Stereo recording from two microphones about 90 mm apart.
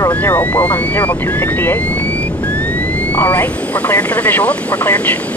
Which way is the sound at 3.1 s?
20° left (ahead or behind).